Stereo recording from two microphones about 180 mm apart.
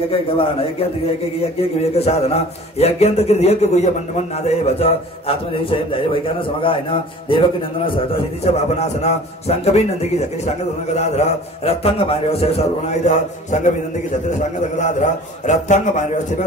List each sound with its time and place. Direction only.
0.1 s a man's voice: 30° left (ahead or behind)
1.8 s a man's voice: 35° left (ahead or behind)
14.8 s a man's voice: 40° left (ahead or behind)